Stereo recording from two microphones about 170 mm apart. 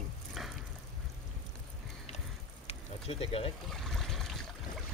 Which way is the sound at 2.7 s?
35° left (ahead or behind).